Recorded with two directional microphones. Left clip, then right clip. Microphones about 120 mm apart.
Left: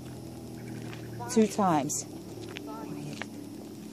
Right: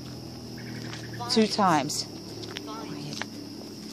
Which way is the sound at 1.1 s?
25° right (ahead or behind).